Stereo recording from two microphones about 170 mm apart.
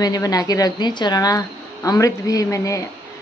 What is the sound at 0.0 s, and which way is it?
A woman's voice, 20° left (ahead or behind).